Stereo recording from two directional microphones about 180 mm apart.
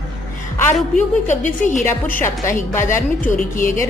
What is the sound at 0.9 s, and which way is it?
Speech, 40° left (ahead or behind).